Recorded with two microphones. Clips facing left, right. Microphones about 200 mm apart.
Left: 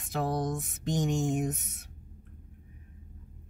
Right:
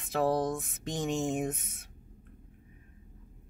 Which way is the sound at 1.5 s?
Centre (ahead or behind).